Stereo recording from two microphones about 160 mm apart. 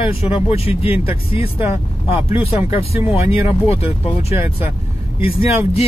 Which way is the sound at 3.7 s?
40° left (ahead or behind).